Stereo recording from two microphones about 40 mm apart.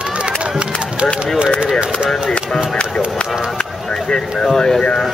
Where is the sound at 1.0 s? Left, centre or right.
Right.